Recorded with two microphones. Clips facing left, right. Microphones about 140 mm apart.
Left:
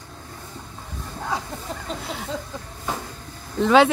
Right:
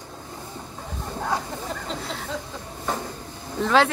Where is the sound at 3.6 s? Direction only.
Centre (ahead or behind).